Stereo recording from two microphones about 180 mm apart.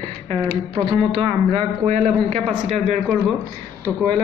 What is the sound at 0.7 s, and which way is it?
A man's voice, 30° right (ahead or behind).